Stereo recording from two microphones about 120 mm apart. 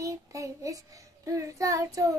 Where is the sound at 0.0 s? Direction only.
25° right (ahead or behind).